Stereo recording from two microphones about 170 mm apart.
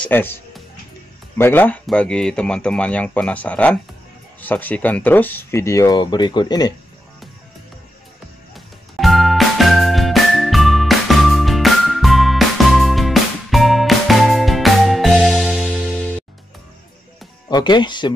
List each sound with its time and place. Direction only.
0.0 s speech: 10° left (ahead or behind)
1.4 s speech: 10° left (ahead or behind)
8.5 s music: centre (ahead or behind)
17.5 s speech: 25° left (ahead or behind)